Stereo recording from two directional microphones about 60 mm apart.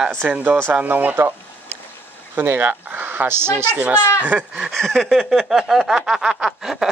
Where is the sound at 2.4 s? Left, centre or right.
Right.